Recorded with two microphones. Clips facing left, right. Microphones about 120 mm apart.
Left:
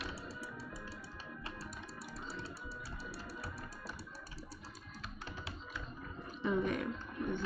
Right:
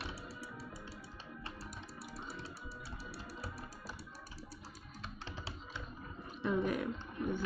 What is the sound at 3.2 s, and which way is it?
Music, 25° right (ahead or behind).